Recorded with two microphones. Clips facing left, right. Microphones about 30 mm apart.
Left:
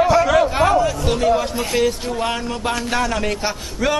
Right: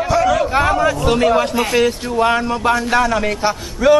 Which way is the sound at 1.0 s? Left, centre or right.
Right.